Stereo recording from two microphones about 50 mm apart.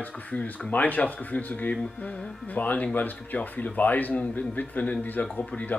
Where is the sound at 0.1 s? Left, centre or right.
Left.